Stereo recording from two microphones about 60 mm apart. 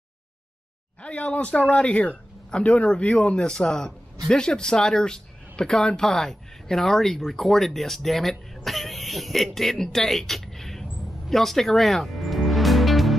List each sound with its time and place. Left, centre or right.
1.0 s speech: left; by 13.1 s centre